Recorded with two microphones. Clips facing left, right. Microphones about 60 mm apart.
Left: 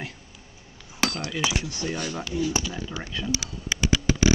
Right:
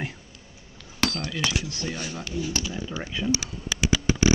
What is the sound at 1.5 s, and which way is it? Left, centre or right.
Speech, centre.